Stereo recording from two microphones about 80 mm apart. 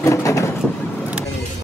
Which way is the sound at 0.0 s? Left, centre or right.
Left.